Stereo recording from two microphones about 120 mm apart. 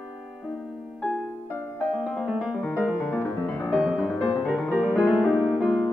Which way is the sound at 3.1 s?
15° left (ahead or behind).